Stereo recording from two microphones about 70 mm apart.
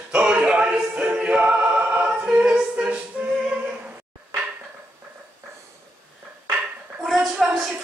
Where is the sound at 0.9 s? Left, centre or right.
Centre.